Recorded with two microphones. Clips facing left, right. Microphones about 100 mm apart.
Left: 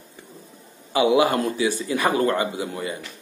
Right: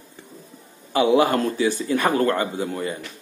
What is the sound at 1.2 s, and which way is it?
Speech, 45° right (ahead or behind).